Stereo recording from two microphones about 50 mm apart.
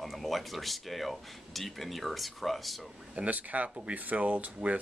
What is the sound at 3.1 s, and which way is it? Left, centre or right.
Speech, right.